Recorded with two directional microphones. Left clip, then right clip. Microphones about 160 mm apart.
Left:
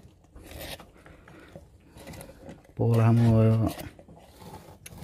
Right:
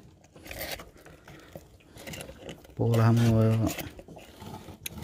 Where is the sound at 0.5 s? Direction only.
20° right (ahead or behind).